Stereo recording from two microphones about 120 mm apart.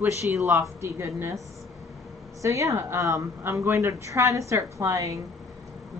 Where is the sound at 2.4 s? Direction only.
25° right (ahead or behind).